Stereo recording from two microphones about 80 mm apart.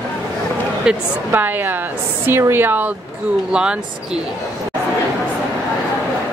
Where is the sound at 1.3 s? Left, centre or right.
Right.